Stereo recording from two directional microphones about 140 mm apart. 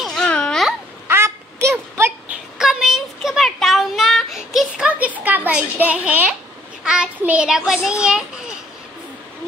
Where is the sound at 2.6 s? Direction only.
5° right (ahead or behind).